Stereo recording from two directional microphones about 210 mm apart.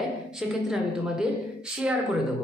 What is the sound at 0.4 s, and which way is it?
Speech, 5° right (ahead or behind).